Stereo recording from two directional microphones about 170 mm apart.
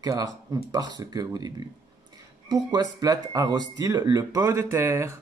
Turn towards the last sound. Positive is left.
turn(degrees=-15)  # may be behind; listen again after turning